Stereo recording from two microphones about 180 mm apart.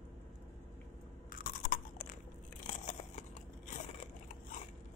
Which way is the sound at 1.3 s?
50° left (ahead or behind).